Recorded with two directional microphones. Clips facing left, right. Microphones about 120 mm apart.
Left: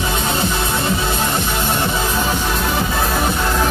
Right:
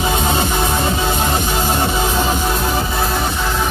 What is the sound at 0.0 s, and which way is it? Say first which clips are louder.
Music: right 2 dB; 15° right (ahead or behind).